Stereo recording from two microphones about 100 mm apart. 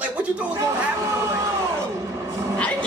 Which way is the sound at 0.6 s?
30° right (ahead or behind).